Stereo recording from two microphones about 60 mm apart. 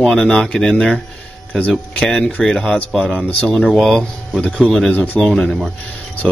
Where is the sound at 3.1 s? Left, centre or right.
Left.